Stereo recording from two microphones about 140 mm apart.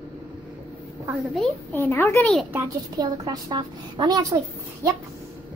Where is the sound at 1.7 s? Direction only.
15° left (ahead or behind).